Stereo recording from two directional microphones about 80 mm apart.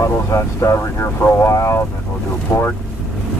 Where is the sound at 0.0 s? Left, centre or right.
Left.